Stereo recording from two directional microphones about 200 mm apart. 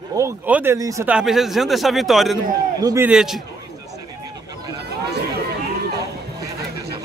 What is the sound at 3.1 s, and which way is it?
Speech, 5° right (ahead or behind).